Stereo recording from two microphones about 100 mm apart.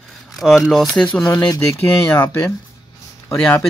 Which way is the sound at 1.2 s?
25° left (ahead or behind).